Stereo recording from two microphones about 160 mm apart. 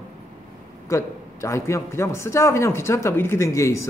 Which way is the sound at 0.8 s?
20° left (ahead or behind).